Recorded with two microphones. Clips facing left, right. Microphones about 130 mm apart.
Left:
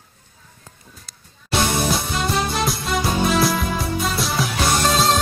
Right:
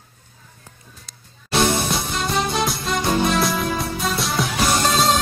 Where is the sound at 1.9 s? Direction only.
Centre (ahead or behind).